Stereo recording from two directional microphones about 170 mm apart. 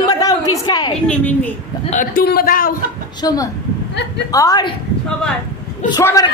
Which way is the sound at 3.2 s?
20° left (ahead or behind).